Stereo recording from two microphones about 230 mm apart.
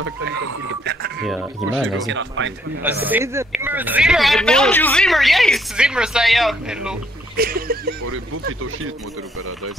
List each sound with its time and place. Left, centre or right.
0.0 s speech: right
1.2 s a man's voice: centre
2.0 s speech: right
2.8 s a man's voice: centre
7.3 s a sound: right
8.0 s speech: right